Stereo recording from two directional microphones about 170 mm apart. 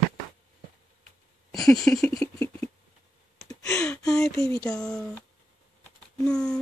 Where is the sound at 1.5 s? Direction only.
Centre (ahead or behind).